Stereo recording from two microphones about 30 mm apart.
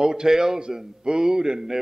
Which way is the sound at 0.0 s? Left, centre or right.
Right.